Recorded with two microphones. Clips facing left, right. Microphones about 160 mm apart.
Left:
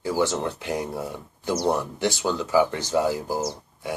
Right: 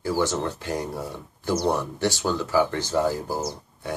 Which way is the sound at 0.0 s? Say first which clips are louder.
Even; 15° left (ahead or behind).